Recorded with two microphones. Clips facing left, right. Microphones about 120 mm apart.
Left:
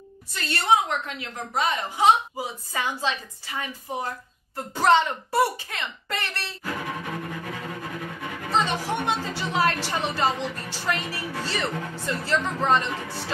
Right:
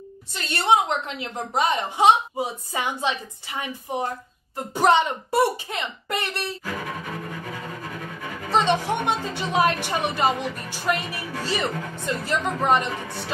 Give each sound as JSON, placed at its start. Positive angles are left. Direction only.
{"t": 0.3, "sound": "a woman's voice", "side_deg": -20}
{"t": 8.5, "sound": "a woman's voice", "side_deg": -20}